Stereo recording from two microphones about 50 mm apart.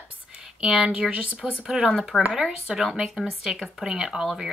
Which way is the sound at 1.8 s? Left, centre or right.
Centre.